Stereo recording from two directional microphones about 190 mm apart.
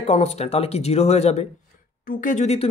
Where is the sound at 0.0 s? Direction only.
35° left (ahead or behind).